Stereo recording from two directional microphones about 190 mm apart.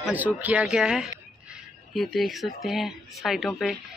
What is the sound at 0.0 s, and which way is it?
A man's voice, 10° right (ahead or behind).